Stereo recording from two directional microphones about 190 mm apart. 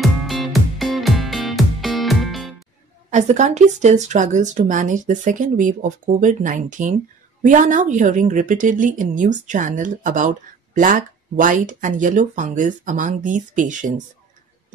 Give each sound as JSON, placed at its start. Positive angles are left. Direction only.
{"t": 0.0, "sound": "music", "side_deg": 0}
{"t": 3.1, "sound": "speech", "side_deg": -40}